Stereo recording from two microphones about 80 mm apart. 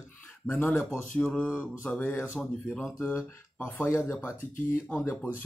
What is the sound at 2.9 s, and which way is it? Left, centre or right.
Speech, left.